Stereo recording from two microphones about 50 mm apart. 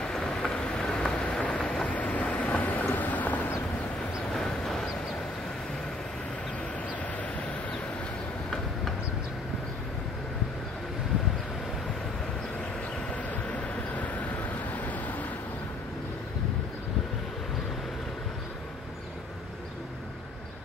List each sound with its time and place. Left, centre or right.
0.0 s vehicle: centre
1.9 s vehicle: left
4.3 s vehicle: centre
13.1 s vehicle: left